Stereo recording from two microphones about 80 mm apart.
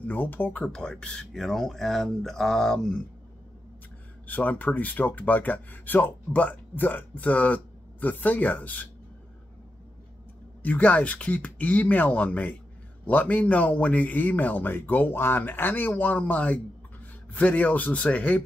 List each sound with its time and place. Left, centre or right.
0.0 s speech: left; by 3.0 s centre
4.3 s speech: centre
10.6 s a man's voice: centre